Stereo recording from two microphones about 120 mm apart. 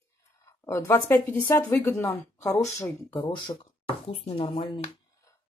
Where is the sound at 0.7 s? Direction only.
25° left (ahead or behind).